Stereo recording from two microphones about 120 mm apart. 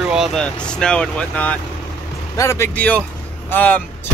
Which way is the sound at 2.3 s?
25° left (ahead or behind).